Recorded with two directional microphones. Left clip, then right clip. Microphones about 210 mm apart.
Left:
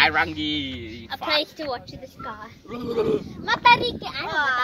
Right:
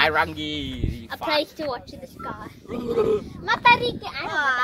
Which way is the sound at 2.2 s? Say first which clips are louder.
Right 1 dB; 20° right (ahead or behind).